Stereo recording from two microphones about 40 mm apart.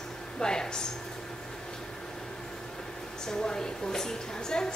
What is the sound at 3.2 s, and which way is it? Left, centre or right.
A woman's voice, centre.